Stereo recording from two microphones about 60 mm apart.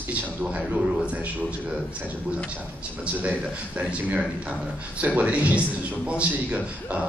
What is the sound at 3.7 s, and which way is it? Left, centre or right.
A man's voice, right.